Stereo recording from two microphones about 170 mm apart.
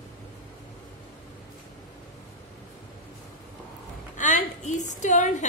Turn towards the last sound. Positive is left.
turn(degrees=45)  # may be behind; listen again after turning